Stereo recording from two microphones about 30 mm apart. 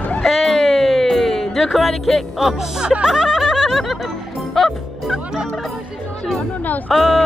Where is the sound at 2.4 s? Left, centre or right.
Centre.